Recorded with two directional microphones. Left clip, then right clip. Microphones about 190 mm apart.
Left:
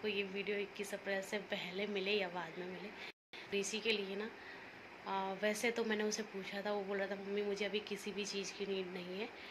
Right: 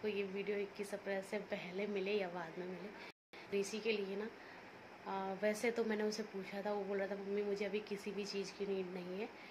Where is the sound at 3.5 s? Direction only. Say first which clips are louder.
Left 1 dB; 5° right (ahead or behind).